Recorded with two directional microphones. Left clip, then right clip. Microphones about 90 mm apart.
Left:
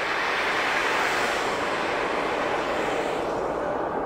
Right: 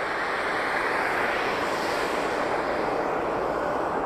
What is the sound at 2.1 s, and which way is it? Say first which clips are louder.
Vehicle: left 1 dB; 25° left (ahead or behind).